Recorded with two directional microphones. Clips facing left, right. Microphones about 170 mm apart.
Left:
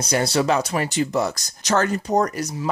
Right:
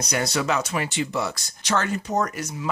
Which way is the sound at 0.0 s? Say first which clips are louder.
Left 5 dB; 30° left (ahead or behind).